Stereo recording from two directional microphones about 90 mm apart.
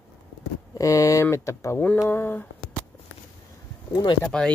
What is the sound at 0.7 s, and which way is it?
Speech, 40° left (ahead or behind).